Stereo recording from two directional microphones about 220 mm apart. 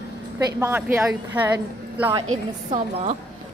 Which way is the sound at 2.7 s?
35° right (ahead or behind).